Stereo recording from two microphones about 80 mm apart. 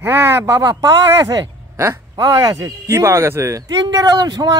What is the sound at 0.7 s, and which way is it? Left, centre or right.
A man's voice, right.